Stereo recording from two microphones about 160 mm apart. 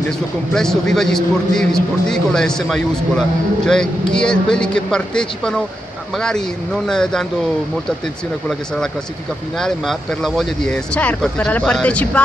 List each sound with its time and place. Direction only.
0.5 s a man's voice: 5° left (ahead or behind)
9.6 s a man's voice: centre (ahead or behind)